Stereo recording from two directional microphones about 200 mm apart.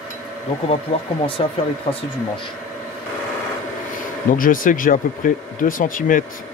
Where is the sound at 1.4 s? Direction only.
30° left (ahead or behind).